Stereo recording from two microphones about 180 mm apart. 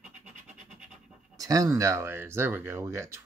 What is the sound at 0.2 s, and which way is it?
Music, 40° right (ahead or behind).